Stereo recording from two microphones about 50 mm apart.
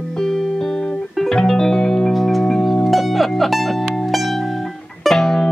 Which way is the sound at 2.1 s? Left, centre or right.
Centre.